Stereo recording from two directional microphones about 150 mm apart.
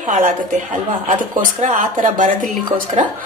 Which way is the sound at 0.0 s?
55° right (ahead or behind).